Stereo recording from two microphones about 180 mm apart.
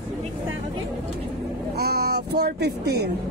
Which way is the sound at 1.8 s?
60° right (ahead or behind).